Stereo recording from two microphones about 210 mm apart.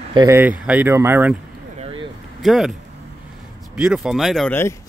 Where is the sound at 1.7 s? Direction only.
25° right (ahead or behind).